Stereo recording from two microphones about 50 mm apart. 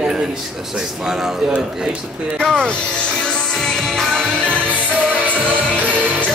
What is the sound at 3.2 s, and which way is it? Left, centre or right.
Music, centre.